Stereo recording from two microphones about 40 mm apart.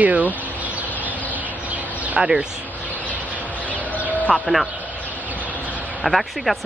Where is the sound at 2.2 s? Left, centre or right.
Right.